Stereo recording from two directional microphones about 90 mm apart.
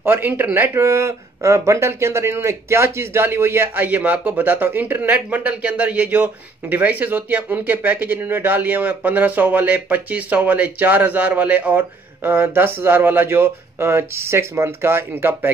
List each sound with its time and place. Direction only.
0.0 s speech: 25° right (ahead or behind)